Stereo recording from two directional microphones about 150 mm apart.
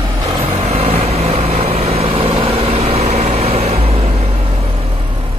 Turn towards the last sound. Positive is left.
turn(degrees=-40)  # may be behind; listen again after turning